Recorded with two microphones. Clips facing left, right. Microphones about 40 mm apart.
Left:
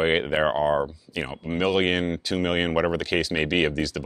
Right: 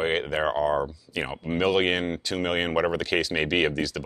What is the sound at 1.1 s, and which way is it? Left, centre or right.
Speech, centre.